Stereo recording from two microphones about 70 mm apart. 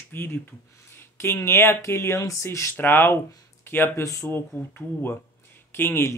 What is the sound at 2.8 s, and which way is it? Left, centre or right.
Speech, left.